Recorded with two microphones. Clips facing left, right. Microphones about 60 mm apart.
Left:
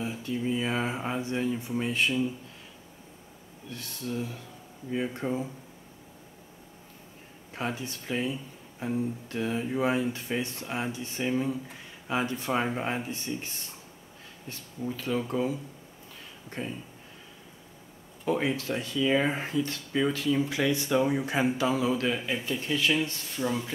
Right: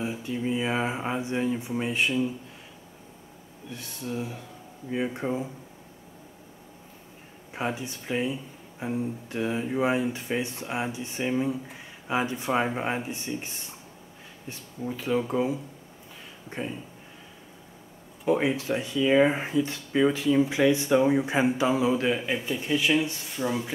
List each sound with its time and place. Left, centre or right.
0.0 s speech: centre
3.7 s speech: centre
7.5 s speech: centre
14.5 s speech: centre
18.2 s speech: centre